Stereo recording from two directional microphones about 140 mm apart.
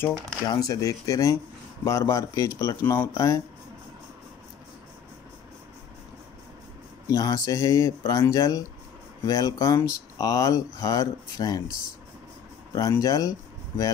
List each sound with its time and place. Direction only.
0.5 s speech: 25° left (ahead or behind)
7.1 s speech: 25° left (ahead or behind)
12.7 s speech: 25° left (ahead or behind)